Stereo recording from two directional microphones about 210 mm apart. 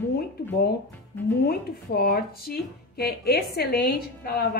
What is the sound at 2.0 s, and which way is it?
Speech, 45° left (ahead or behind).